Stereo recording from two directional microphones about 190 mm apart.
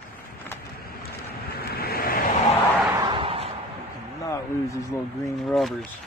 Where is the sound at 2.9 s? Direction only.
20° right (ahead or behind).